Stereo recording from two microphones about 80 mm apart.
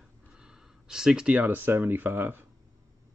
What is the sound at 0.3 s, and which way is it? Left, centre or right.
Speech, centre.